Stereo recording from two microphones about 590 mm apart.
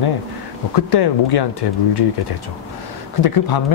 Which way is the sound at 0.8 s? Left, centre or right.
Left.